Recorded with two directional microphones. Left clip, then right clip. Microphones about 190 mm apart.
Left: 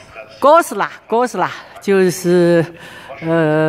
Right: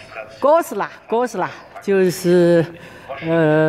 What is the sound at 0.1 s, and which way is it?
Speech, 25° left (ahead or behind).